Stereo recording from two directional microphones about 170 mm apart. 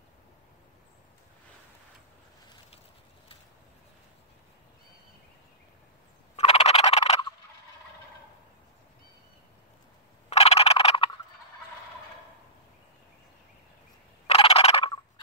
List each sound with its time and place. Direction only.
6.3 s frog: 40° left (ahead or behind)
10.3 s fowl: 40° left (ahead or behind)
14.2 s frog: 35° left (ahead or behind)